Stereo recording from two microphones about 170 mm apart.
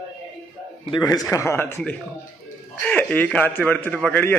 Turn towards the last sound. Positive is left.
turn(degrees=10)  # may be behind; listen again after turning